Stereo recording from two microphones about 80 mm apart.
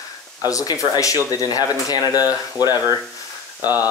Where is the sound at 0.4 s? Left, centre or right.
Left.